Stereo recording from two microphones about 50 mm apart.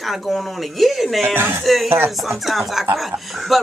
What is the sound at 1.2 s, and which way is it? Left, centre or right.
Speech, right.